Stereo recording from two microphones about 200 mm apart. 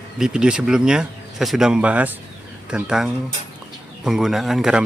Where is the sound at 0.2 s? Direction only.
5° right (ahead or behind).